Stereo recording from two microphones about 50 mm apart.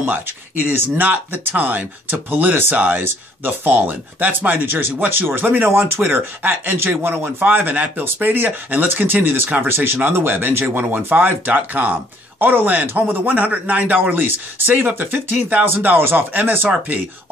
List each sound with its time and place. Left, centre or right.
0.7 s a man's voice: right